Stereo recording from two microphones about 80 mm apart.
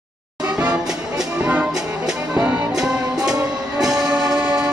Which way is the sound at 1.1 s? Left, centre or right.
Centre.